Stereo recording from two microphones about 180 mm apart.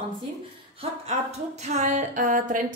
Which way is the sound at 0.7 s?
35° right (ahead or behind).